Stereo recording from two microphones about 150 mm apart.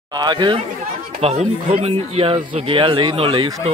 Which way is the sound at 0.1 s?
30° right (ahead or behind).